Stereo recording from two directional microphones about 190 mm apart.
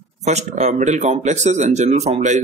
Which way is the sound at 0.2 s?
35° right (ahead or behind).